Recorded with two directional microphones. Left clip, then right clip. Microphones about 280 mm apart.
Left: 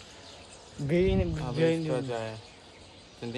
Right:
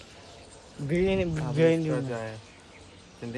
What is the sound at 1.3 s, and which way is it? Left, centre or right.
Speech, right.